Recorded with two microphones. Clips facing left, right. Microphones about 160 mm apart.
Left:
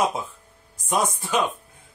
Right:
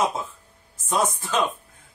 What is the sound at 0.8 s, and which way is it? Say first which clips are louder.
Speech: even; 15° left (ahead or behind).